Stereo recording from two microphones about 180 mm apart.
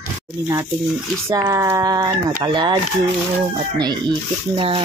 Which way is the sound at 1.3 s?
20° right (ahead or behind).